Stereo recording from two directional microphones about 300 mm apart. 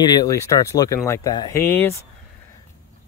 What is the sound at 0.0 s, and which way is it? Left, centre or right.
Speech, centre.